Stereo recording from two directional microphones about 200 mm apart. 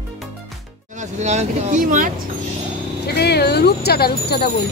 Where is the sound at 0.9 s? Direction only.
35° right (ahead or behind).